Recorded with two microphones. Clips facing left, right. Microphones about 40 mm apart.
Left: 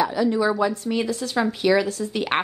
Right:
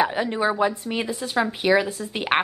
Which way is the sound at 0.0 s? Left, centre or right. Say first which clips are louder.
Left 1 dB; right.